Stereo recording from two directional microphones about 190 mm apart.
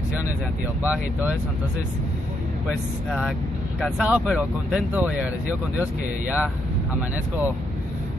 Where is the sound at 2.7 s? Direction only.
5° right (ahead or behind).